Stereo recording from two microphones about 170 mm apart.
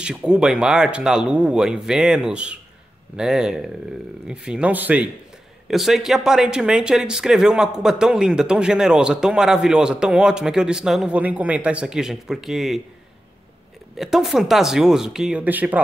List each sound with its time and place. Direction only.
0.0 s speech: 5° right (ahead or behind)
13.9 s speech: centre (ahead or behind)